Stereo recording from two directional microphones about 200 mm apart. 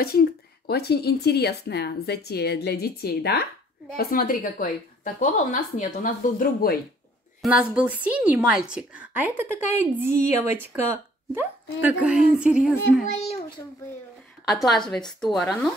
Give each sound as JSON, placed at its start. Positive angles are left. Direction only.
{"t": 0.0, "sound": "speech", "side_deg": 50}
{"t": 7.4, "sound": "speech", "side_deg": -5}
{"t": 13.0, "sound": "a child's voice", "side_deg": 35}
{"t": 14.5, "sound": "speech", "side_deg": 0}